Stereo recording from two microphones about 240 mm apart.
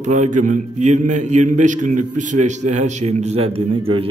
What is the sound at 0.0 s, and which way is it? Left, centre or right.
Speech, right.